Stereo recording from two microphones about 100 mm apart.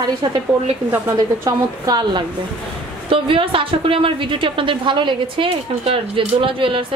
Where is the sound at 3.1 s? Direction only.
60° right (ahead or behind).